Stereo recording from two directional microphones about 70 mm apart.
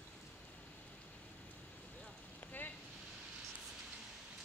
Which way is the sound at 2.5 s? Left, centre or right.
Left.